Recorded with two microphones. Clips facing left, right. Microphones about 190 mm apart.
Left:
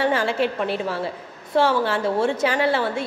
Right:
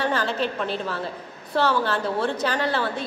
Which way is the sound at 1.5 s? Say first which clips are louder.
Left 3 dB; 25° left (ahead or behind).